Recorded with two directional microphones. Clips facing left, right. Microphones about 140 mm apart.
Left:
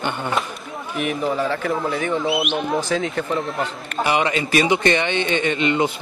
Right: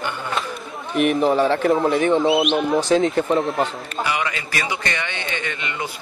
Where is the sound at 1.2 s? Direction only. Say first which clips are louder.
Right 4 dB; 30° right (ahead or behind).